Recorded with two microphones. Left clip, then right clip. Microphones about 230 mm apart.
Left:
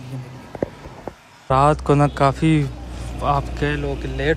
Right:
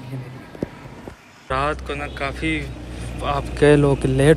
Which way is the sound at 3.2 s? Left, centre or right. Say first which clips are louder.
Right 5 dB; centre.